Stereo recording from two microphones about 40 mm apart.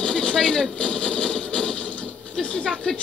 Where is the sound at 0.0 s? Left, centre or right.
Left.